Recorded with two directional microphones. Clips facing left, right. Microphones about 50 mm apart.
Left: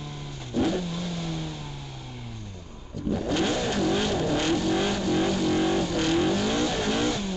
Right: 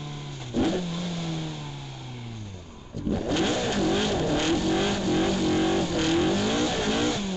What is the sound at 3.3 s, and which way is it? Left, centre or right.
Vehicle, right.